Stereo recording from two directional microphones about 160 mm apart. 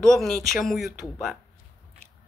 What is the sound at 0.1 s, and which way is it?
Speech, centre (ahead or behind).